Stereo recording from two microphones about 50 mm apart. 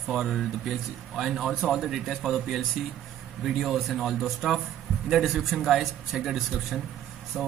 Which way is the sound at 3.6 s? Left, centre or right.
Centre.